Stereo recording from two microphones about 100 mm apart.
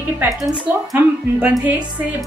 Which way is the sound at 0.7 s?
15° right (ahead or behind).